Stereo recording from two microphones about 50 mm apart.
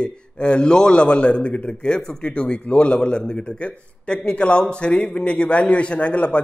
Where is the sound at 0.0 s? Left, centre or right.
Centre.